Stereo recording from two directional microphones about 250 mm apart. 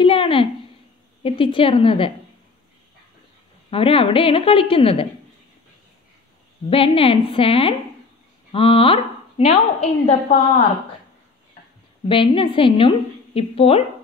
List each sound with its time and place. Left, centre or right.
0.0 s a sound: left
1.2 s a woman's voice: left
3.7 s a woman's voice: left
6.7 s a woman's voice: left
12.1 s a woman's voice: left